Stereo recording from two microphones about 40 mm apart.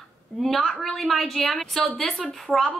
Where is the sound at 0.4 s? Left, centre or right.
Centre.